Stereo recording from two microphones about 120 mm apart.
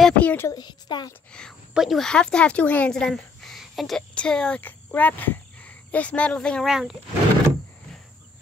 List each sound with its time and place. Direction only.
0.0 s a sound: 10° left (ahead or behind)
0.5 s speech: 35° left (ahead or behind)
1.7 s speech: centre (ahead or behind)
6.7 s speech: 5° right (ahead or behind)